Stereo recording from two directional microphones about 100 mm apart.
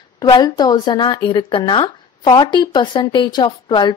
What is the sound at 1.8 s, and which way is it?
Speech, 45° left (ahead or behind).